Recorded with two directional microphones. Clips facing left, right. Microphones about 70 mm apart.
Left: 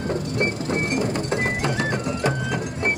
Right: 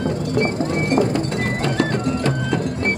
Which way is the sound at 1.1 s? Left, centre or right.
Centre.